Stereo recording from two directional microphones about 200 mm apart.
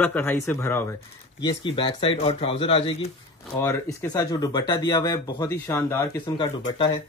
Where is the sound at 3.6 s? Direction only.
15° left (ahead or behind).